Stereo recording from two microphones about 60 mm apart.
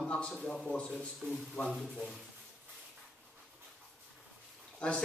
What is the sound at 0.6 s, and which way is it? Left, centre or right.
Speech, centre.